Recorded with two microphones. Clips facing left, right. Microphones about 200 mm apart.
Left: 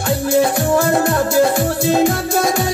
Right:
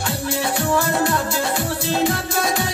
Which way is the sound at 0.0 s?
45° left (ahead or behind).